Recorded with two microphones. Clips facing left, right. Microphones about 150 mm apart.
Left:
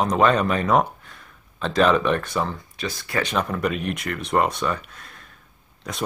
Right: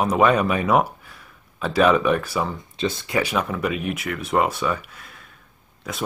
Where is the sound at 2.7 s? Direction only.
25° right (ahead or behind).